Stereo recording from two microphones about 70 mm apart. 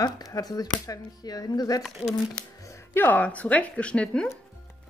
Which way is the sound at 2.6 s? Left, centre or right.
Left.